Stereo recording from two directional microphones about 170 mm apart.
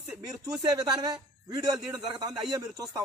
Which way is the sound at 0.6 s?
25° right (ahead or behind).